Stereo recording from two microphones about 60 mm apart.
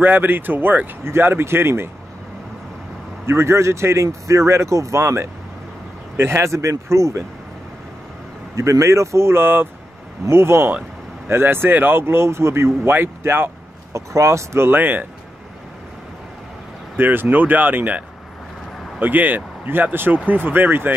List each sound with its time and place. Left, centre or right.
0.0 s a man's voice: right
3.3 s speech: right
8.5 s a man's voice: right
13.9 s speech: right
14.7 s a man's voice: right
16.9 s a man's voice: right